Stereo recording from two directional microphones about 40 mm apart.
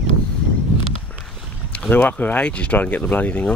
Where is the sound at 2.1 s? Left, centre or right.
Left.